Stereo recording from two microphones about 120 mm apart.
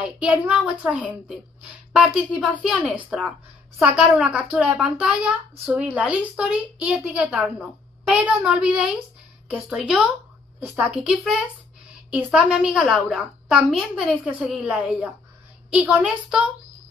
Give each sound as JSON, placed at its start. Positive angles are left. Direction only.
{"t": 0.0, "sound": "a woman's voice", "side_deg": -10}
{"t": 12.1, "sound": "speech", "side_deg": -10}